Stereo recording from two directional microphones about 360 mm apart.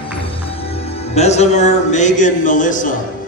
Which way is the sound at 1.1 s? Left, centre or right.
Centre.